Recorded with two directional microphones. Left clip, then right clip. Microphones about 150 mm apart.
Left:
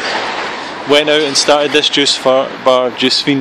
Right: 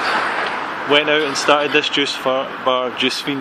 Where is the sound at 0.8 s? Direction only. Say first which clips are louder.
Left 5 dB; 35° left (ahead or behind).